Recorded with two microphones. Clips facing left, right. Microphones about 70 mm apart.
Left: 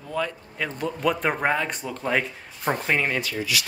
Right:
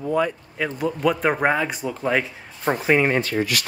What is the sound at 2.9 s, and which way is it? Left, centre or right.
Speech, right.